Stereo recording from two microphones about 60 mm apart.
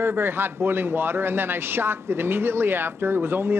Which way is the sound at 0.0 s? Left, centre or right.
Right.